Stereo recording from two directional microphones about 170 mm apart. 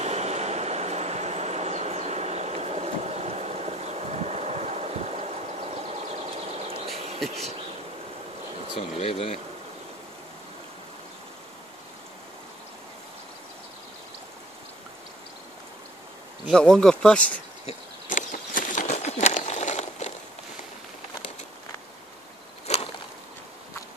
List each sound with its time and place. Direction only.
0.0 s train: 40° right (ahead or behind)
7.2 s bee: 40° right (ahead or behind)
8.7 s speech: 35° left (ahead or behind)
16.4 s speech: 5° left (ahead or behind)
17.6 s a sound: 50° left (ahead or behind)
22.7 s a sound: 40° left (ahead or behind)